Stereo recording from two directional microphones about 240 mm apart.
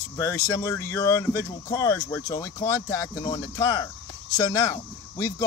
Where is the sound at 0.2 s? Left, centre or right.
Centre.